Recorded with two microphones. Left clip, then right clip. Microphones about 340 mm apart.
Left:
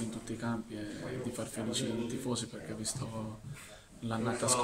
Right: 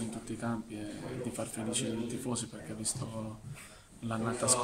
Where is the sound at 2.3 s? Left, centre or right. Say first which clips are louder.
Left 1 dB; centre.